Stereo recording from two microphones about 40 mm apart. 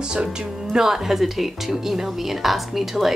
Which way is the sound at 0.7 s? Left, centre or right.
Centre.